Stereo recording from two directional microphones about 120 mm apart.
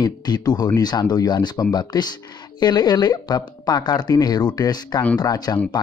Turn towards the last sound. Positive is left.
turn(degrees=30)  # may be behind; listen again after turning